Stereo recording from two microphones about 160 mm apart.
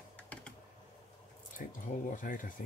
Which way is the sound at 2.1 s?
55° left (ahead or behind).